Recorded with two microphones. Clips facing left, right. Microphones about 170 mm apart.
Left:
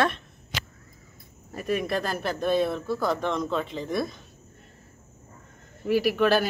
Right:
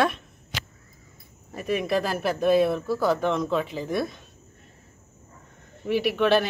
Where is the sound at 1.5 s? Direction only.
Centre (ahead or behind).